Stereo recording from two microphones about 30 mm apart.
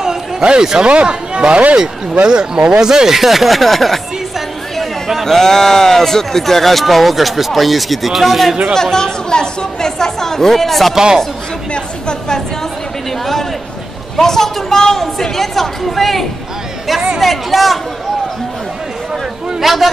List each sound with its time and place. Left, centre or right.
0.0 s a sound: right
0.6 s speech: right
0.8 s speech: right; by 4.0 s centre
4.7 s chatter: centre
5.2 s speech: centre
8.9 s speech: left; by 11.0 s centre
11.7 s a sound: left
14.1 s a woman's voice: centre
15.3 s chatter: centre
19.6 s speech: centre